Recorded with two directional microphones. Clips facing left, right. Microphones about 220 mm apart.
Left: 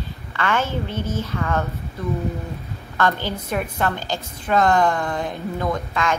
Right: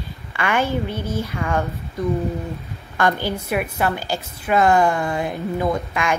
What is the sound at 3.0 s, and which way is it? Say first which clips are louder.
A woman's voice: right 2 dB; 10° right (ahead or behind).